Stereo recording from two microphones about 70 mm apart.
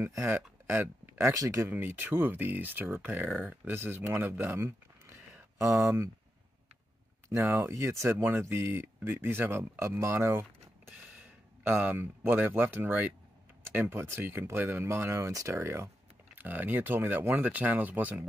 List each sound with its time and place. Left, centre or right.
0.0 s speech: right
0.3 s speech: right
1.7 s speech: right
3.6 s speech: right
7.2 s speech: right
11.6 s speech: right
16.3 s speech: right